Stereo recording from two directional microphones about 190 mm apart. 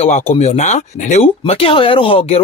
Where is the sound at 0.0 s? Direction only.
35° left (ahead or behind).